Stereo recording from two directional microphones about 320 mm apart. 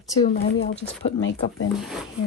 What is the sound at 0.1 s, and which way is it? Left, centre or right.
Speech, centre.